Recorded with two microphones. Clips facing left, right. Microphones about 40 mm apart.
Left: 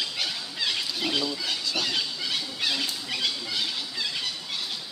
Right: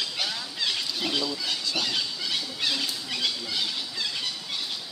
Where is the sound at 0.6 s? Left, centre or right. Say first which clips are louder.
Left 1 dB; centre.